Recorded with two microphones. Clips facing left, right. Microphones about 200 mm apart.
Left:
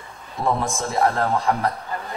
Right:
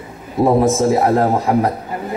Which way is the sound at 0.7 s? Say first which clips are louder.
Right 8 dB; 20° right (ahead or behind).